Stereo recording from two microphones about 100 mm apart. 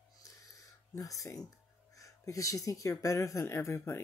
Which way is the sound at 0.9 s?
35° left (ahead or behind).